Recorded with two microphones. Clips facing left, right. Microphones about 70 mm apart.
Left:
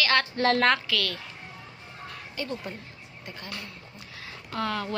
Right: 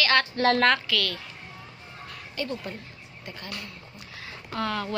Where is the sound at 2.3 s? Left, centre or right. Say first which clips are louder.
Right 2 dB; centre.